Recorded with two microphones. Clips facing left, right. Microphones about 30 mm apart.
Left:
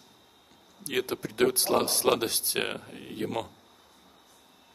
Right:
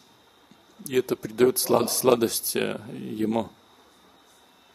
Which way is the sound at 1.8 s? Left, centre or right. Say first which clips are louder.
Right 5 dB; centre.